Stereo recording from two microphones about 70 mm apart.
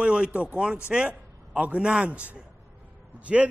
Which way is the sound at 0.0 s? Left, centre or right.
Centre.